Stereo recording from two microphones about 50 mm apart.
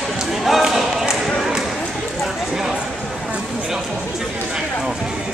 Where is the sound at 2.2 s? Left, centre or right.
Centre.